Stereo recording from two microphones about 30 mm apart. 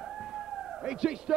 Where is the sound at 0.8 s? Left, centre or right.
Right.